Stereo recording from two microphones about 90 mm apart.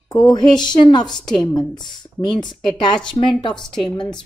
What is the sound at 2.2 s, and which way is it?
Speech, 60° left (ahead or behind).